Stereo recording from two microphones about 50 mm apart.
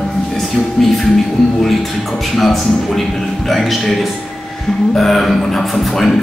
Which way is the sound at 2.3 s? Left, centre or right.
Centre.